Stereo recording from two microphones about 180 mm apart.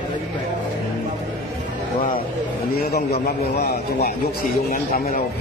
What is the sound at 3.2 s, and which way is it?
A man's voice, 60° left (ahead or behind).